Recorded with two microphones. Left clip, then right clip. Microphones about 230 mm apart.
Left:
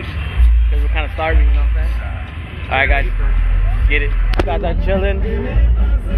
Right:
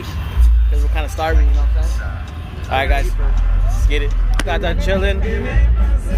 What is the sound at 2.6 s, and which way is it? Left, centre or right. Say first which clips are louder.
Speech: left 3 dB; centre.